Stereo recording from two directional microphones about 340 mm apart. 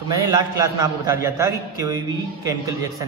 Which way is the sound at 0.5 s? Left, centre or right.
Centre.